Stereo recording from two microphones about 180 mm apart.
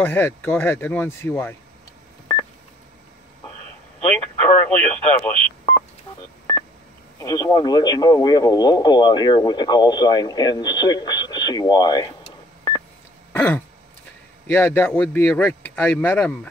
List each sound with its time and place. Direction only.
0.0 s speech: 10° left (ahead or behind)
4.0 s speech: 10° left (ahead or behind)
7.2 s speech: 20° left (ahead or behind)
13.3 s throat clearing: 10° left (ahead or behind)
14.5 s speech: 10° left (ahead or behind)